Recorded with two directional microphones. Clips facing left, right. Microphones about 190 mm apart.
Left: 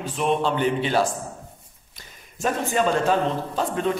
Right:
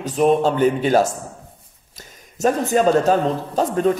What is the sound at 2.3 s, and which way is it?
A man's voice, 40° right (ahead or behind).